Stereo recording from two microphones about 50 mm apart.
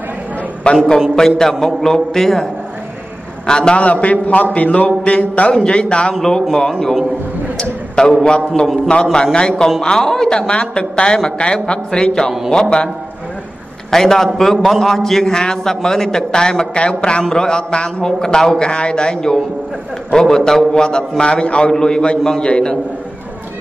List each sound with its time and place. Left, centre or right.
0.7 s a man's voice: left
1.1 s a man's voice: centre
3.4 s a man's voice: centre
7.5 s a man's voice: centre